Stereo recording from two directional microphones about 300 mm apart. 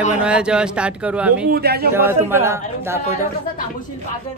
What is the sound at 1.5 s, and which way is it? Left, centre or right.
Speech, right.